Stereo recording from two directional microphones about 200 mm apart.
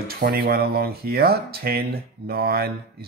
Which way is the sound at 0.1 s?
50° right (ahead or behind).